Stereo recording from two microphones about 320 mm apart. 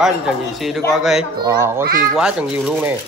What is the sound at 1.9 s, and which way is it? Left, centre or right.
Speech, right.